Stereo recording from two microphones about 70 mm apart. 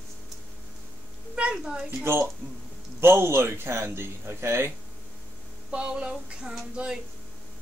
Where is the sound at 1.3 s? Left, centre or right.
Centre.